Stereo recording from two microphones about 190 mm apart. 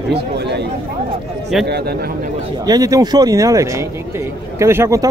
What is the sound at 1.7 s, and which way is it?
Speech, 60° right (ahead or behind).